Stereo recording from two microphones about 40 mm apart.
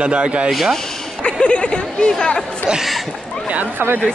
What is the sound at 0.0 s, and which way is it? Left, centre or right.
Speech, right.